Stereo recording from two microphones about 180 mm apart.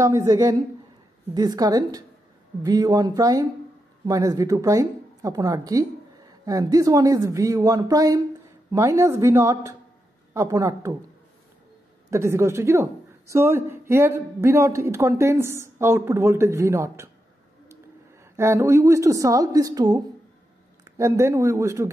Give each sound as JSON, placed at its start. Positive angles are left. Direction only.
{"t": 0.0, "sound": "a woman's voice", "side_deg": -15}
{"t": 12.1, "sound": "a woman's voice", "side_deg": -15}
{"t": 18.3, "sound": "a woman's voice", "side_deg": -15}
{"t": 21.0, "sound": "a woman's voice", "side_deg": -15}